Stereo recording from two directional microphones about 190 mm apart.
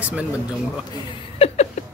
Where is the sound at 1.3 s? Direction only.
35° left (ahead or behind).